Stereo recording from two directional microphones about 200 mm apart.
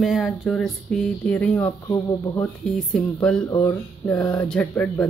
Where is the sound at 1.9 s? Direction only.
15° left (ahead or behind).